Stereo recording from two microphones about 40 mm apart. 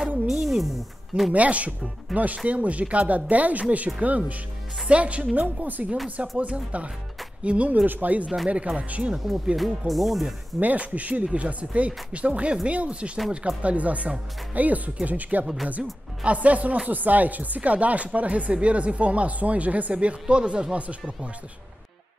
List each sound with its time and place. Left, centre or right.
0.3 s music: centre
1.3 s speech: right
5.4 s speech: right
6.3 s speech: right
8.5 s speech: right
9.6 s speech: centre
10.6 s speech: right
15.4 s speech: centre
16.3 s speech: right